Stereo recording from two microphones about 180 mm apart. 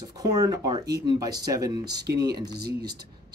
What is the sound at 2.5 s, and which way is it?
Speech, 60° right (ahead or behind).